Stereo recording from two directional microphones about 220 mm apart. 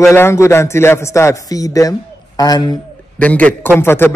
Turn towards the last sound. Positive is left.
turn(degrees=10)  # may be behind; listen again after turning